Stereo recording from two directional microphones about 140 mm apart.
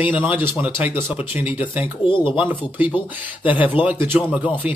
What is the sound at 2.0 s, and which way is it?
Speech, 35° left (ahead or behind).